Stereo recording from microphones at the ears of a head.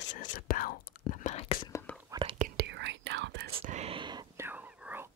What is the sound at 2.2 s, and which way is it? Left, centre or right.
Whispering, right.